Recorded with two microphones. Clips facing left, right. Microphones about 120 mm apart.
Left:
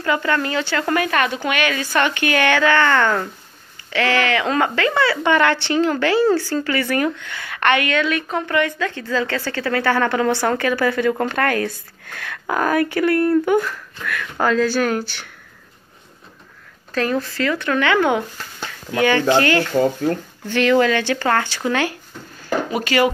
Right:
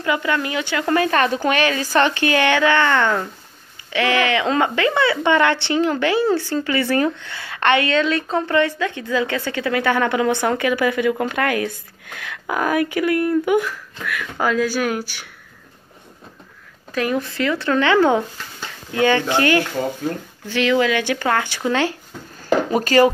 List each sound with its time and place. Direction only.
0.0 s a woman's voice: 15° right (ahead or behind)
0.9 s a woman's voice: 30° right (ahead or behind); by 15.2 s 10° right (ahead or behind)
16.9 s speech: 15° right (ahead or behind)
20.4 s a woman's voice: 5° right (ahead or behind); by 21.9 s 20° right (ahead or behind)
22.8 s a woman's voice: 35° right (ahead or behind)